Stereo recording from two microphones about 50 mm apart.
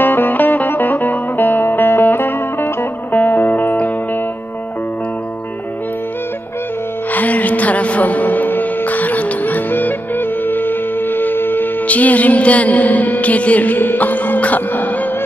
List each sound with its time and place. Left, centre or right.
0.0 s music: left
7.1 s music: left
11.9 s music: left